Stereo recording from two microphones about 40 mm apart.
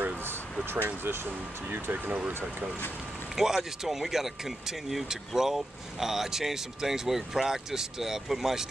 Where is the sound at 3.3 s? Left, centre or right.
Centre.